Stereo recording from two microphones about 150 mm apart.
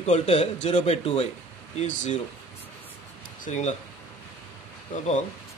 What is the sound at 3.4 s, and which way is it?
Speech, 50° left (ahead or behind).